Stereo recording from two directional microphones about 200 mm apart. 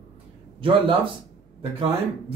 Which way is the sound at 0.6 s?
25° right (ahead or behind).